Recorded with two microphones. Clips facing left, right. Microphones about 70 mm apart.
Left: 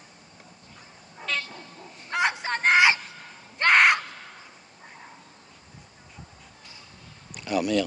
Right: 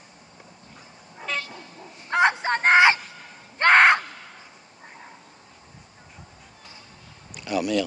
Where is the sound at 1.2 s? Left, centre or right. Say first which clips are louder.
Right 1 dB; centre.